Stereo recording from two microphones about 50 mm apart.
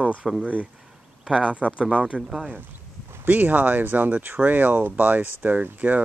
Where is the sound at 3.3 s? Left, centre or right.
Right.